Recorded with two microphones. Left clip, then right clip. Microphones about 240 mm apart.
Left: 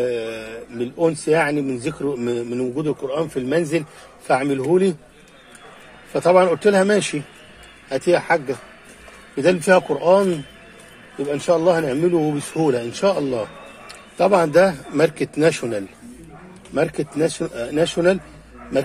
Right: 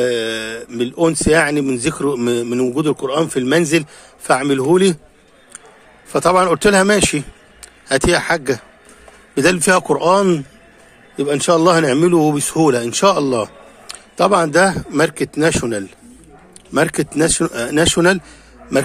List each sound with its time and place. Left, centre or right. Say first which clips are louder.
0.0 s speech: right 5 dB; right
6.1 s speech: right 2 dB; right